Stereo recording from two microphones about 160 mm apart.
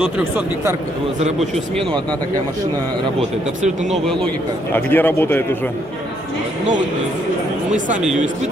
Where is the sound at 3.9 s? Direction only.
Centre (ahead or behind).